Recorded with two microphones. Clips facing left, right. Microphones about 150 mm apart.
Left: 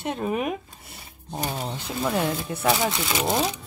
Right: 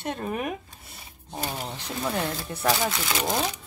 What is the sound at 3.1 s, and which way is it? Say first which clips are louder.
Speech: left 3 dB; 5° left (ahead or behind).